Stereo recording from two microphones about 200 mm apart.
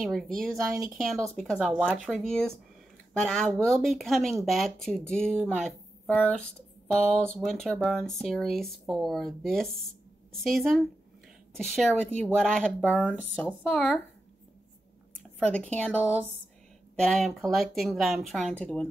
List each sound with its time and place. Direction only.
0.0 s speech: centre (ahead or behind)
0.6 s speech: 10° right (ahead or behind)
0.9 s speech: centre (ahead or behind)
13.2 s speech: 5° right (ahead or behind)
15.4 s speech: 5° left (ahead or behind)
16.0 s speech: 5° right (ahead or behind)